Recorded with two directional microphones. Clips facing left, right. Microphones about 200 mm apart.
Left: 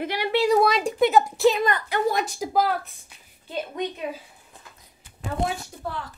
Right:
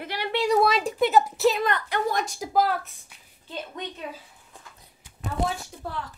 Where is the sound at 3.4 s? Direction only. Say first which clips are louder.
Left 6 dB; 15° left (ahead or behind).